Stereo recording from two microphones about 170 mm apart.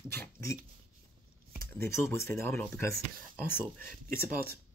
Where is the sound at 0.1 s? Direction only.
15° left (ahead or behind).